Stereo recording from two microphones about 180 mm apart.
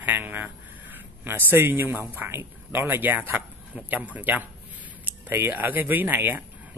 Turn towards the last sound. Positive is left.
turn(degrees=-10)  # may be behind; listen again after turning